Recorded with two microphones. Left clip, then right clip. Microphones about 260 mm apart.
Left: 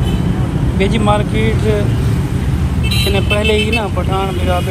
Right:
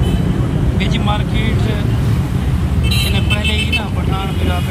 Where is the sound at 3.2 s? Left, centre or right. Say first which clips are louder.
Left 4 dB; centre.